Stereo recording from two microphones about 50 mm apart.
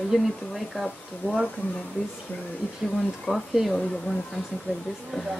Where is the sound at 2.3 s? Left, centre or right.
Left.